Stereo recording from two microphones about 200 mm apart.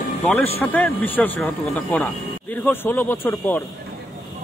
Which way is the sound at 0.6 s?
10° left (ahead or behind).